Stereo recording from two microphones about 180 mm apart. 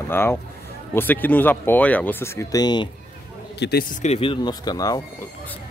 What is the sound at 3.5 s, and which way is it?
Speech, 70° left (ahead or behind).